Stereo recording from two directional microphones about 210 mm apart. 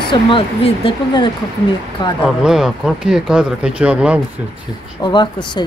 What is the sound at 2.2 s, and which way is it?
Speech, centre (ahead or behind).